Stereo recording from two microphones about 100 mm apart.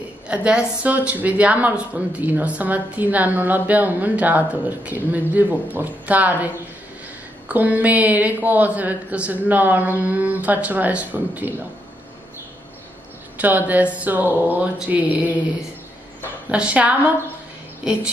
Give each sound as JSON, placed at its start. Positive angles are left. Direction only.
{"t": 0.3, "sound": "speech", "side_deg": -10}
{"t": 13.4, "sound": "speech", "side_deg": -15}
{"t": 16.4, "sound": "speech", "side_deg": -10}